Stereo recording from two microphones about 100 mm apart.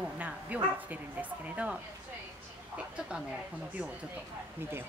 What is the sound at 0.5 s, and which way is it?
Speech, 15° right (ahead or behind).